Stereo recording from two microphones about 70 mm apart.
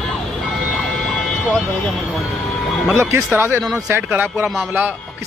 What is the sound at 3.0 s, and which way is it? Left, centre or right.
Speech, right.